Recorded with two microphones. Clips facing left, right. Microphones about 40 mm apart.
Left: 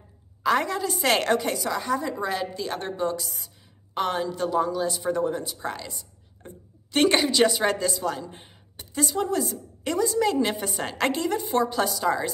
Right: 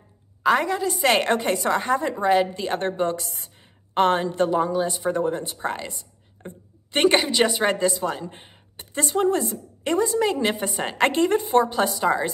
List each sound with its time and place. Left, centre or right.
0.4 s a woman's voice: centre
1.3 s a woman's voice: right
2.1 s a woman's voice: right
4.6 s a woman's voice: right
6.4 s a sound: right
7.1 s speech: centre